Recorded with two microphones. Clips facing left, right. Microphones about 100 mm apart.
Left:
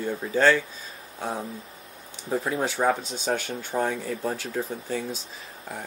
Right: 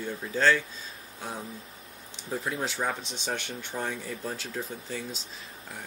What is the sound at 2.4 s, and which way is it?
Speech, 45° left (ahead or behind).